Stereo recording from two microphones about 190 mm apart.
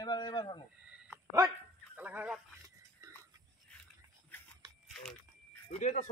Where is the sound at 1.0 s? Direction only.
15° right (ahead or behind).